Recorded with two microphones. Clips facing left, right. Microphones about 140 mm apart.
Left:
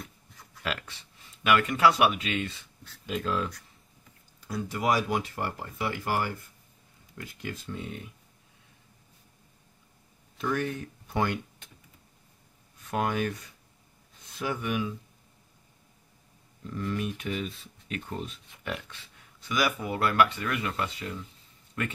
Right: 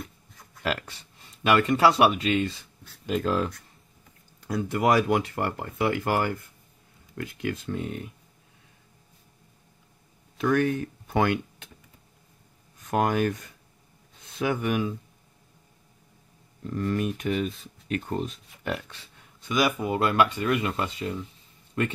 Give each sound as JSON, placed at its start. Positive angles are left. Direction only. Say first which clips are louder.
{"t": 0.7, "sound": "speech", "louder": "right 5 dB", "side_deg": -40}
{"t": 4.4, "sound": "speech", "louder": "right 6 dB", "side_deg": -55}
{"t": 10.3, "sound": "speech", "louder": "right 7 dB", "side_deg": -70}
{"t": 12.9, "sound": "speech", "louder": "right 5 dB", "side_deg": -50}
{"t": 14.4, "sound": "speech", "louder": "right 5 dB", "side_deg": -60}
{"t": 16.7, "sound": "speech", "louder": "right 5 dB", "side_deg": -45}
{"t": 19.4, "sound": "speech", "louder": "right 4 dB", "side_deg": -20}